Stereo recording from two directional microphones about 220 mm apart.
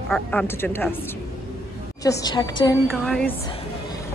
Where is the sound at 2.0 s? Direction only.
15° left (ahead or behind).